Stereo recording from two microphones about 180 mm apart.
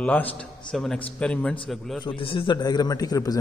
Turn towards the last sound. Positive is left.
turn(degrees=20)  # may be behind; listen again after turning